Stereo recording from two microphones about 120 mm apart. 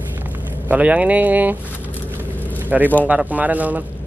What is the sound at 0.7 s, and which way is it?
Speech, 10° right (ahead or behind).